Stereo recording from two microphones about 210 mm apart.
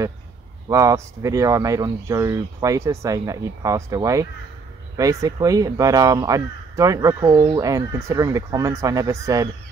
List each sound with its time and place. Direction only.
0.7 s speech: 15° right (ahead or behind)